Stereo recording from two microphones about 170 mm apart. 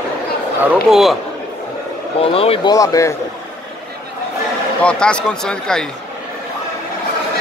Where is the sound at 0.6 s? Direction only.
Centre (ahead or behind).